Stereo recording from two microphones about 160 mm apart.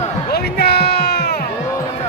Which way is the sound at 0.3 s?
80° left.